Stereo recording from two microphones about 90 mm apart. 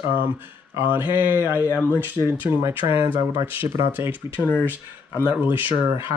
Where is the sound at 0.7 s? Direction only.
25° right (ahead or behind).